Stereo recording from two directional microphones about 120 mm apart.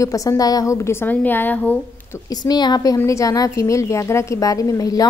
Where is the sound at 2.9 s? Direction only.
25° left (ahead or behind).